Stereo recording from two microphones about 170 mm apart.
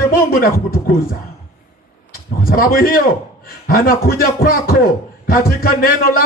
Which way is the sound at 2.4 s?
60° left (ahead or behind).